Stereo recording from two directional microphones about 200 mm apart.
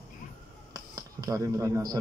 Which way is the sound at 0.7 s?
20° right (ahead or behind).